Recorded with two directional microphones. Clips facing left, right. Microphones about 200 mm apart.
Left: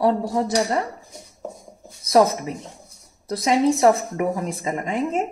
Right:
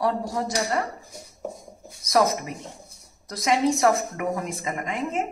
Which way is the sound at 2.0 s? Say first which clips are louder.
Left 5 dB; 30° left (ahead or behind).